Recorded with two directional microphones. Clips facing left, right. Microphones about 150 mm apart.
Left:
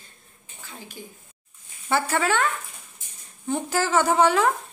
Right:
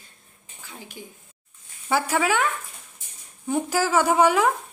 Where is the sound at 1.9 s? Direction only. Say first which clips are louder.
Right 1 dB; 10° right (ahead or behind).